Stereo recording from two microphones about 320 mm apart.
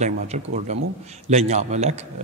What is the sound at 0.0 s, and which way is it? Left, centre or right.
A man's voice, right.